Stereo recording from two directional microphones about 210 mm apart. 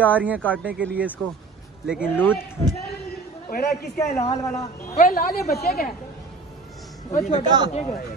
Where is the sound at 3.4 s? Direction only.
45° left (ahead or behind).